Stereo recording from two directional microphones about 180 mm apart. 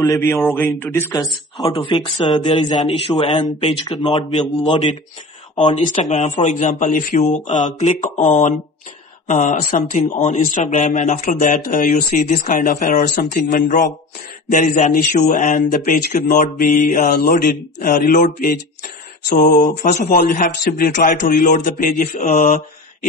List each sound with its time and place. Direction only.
0.0 s a man's voice: 15° left (ahead or behind); by 22.6 s 45° left (ahead or behind)